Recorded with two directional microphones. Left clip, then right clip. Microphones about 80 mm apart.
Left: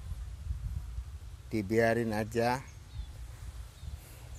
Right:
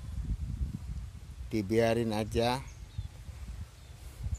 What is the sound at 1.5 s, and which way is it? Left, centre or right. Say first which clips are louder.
Speech: even; right.